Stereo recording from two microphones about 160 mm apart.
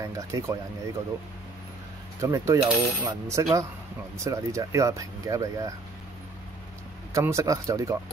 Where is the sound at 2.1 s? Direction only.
20° right (ahead or behind).